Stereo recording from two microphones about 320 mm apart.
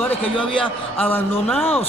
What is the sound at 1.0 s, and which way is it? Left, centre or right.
Speech, centre.